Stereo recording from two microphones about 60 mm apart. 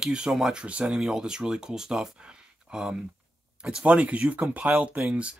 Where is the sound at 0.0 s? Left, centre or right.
Centre.